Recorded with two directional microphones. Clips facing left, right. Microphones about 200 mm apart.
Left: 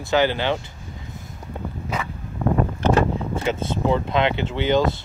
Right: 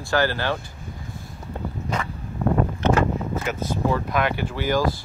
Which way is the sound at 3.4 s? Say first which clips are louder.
Left 4 dB; 25° left (ahead or behind).